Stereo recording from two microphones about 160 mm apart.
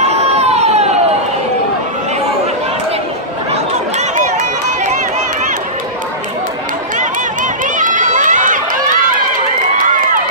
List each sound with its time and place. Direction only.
0.0 s crowd: 40° right (ahead or behind)
7.7 s run: 55° right (ahead or behind)